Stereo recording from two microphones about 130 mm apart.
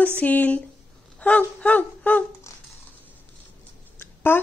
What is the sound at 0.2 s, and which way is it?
Speech, 15° left (ahead or behind).